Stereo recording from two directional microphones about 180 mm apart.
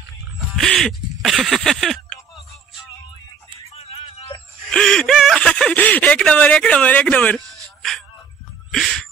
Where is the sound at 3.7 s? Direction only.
35° left (ahead or behind).